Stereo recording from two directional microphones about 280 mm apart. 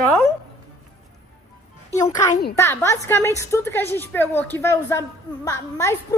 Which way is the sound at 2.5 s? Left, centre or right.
Centre.